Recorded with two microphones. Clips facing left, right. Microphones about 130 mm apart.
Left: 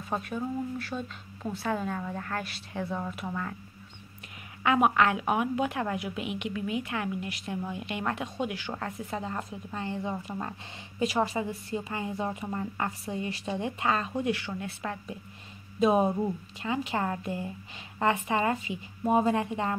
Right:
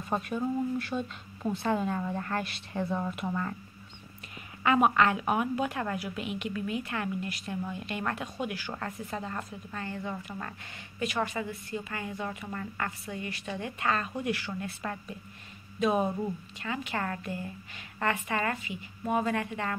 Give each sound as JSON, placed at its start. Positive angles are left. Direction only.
{"t": 0.1, "sound": "speech", "side_deg": 0}
{"t": 4.6, "sound": "a woman's voice", "side_deg": 5}
{"t": 14.5, "sound": "a woman's voice", "side_deg": 10}
{"t": 15.8, "sound": "a woman's voice", "side_deg": 25}